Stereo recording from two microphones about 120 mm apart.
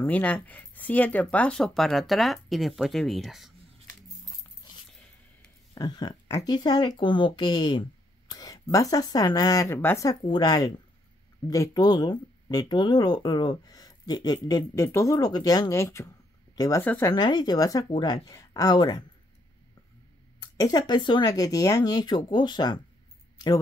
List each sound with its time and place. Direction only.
0.0 s speech: 10° left (ahead or behind)
5.8 s speech: 35° left (ahead or behind)
20.3 s speech: 30° left (ahead or behind)
23.3 s a sound: 35° left (ahead or behind)